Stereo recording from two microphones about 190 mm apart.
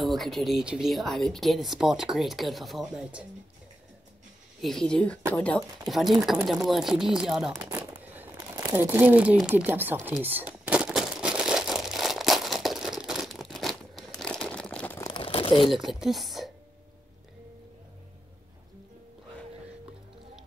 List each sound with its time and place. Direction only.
0.0 s speech: centre (ahead or behind)
4.6 s speech: centre (ahead or behind)
5.3 s a sound: 5° left (ahead or behind)
15.1 s crumpling: 30° left (ahead or behind)
15.7 s speech: centre (ahead or behind)